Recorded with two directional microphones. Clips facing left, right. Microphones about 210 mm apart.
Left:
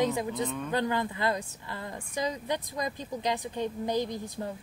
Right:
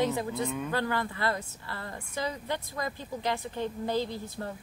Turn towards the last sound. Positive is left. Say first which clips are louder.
# left 1 dB
turn(degrees=15)  # may be behind; listen again after turning